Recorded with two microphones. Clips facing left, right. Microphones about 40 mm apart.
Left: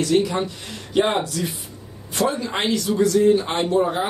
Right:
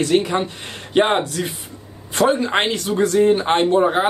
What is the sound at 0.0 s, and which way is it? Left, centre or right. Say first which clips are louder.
Speech: right 2 dB; right.